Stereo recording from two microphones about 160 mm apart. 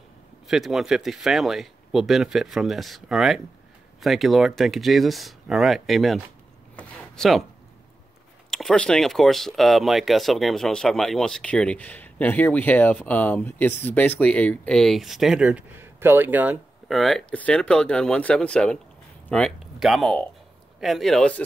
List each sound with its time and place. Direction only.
0.5 s speech: centre (ahead or behind)
8.5 s speech: centre (ahead or behind)